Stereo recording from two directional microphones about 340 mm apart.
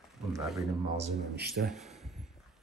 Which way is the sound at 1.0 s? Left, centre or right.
Right.